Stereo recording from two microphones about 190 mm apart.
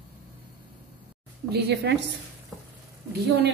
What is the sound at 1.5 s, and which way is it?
Speech, 60° right (ahead or behind).